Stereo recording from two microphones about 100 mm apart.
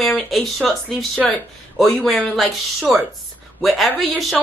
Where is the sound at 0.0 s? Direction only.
Centre (ahead or behind).